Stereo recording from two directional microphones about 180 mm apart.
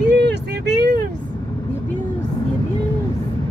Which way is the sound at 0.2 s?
70° right (ahead or behind).